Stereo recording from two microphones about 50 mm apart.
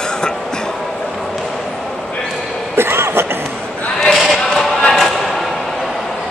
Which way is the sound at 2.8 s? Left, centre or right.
Right.